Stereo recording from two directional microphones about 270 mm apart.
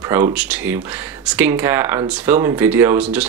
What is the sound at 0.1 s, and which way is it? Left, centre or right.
Speech, centre.